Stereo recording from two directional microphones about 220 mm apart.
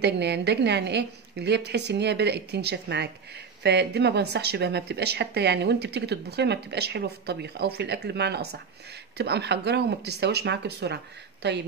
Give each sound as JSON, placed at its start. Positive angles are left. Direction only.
{"t": 0.0, "sound": "speech", "side_deg": -50}